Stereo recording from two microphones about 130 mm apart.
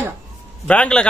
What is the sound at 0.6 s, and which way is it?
Speech, 10° left (ahead or behind).